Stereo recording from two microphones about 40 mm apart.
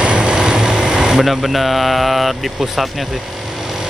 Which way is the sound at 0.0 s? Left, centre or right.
Right.